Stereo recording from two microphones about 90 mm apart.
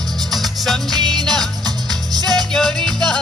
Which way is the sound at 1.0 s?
50° right (ahead or behind).